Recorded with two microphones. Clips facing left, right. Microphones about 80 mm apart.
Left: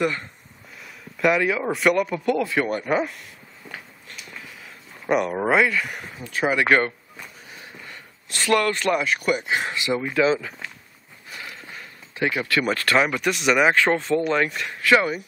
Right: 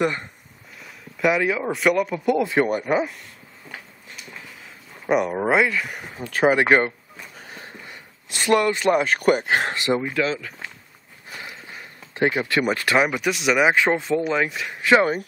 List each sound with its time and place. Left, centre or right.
0.0 s speech: right
0.8 s speech: centre
2.4 s speech: right
2.7 s speech: centre
4.1 s a sound: centre
5.0 s speech: centre
6.4 s speech: right
7.8 s a sound: centre
9.0 s speech: right
10.2 s speech: centre
12.3 s speech: right; by 14.8 s centre
14.8 s speech: right